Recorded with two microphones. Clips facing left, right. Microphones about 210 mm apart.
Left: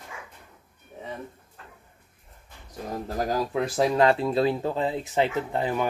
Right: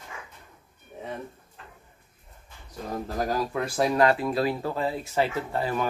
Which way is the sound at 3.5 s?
20° left (ahead or behind).